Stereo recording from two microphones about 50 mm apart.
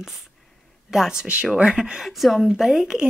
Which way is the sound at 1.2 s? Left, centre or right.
Right.